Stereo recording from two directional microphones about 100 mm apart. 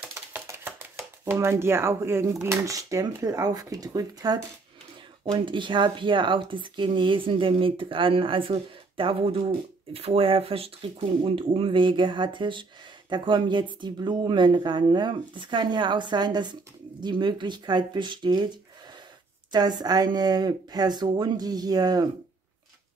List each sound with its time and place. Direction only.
0.1 s shuffling cards: 25° right (ahead or behind)
2.4 s speech: 30° right (ahead or behind)
5.3 s speech: 55° right (ahead or behind)
9.9 s speech: 70° right (ahead or behind); by 22.1 s 40° right (ahead or behind)